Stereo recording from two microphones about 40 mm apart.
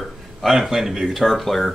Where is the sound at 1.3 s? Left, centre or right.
Centre.